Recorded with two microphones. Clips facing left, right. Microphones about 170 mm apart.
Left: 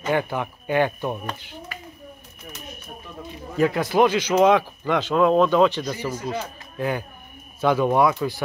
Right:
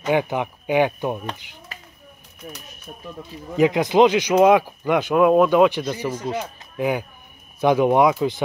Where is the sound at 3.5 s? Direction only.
15° right (ahead or behind).